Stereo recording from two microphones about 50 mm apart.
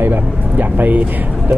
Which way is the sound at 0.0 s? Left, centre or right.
Right.